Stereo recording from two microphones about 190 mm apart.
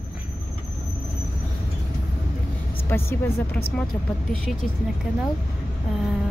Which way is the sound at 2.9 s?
15° left (ahead or behind).